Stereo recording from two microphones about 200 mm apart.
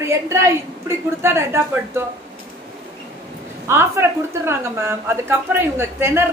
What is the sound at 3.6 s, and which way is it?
A woman's voice, 10° right (ahead or behind).